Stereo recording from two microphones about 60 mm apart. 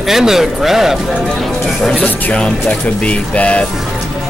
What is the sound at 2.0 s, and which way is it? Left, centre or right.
Speech, centre.